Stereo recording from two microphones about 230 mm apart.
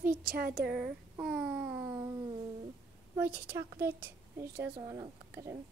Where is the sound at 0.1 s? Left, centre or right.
Right.